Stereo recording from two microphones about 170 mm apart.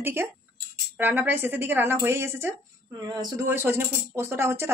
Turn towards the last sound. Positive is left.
turn(degrees=-15)  # may be behind; listen again after turning